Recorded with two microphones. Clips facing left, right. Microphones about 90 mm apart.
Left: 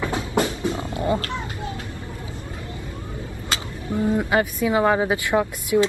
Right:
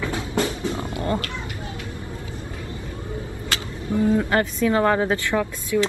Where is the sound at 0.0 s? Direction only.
20° left (ahead or behind).